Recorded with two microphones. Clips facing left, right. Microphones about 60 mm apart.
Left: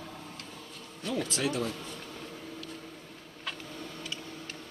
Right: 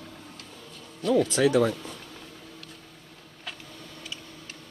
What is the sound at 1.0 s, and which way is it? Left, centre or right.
Speech, right.